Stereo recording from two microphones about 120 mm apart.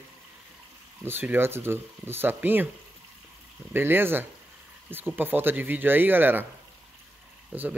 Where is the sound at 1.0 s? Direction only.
15° right (ahead or behind).